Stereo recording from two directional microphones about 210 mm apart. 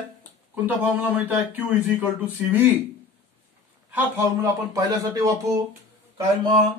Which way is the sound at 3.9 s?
15° right (ahead or behind).